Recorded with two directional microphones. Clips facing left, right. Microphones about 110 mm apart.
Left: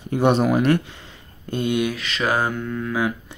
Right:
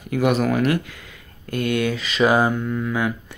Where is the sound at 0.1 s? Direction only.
30° left (ahead or behind).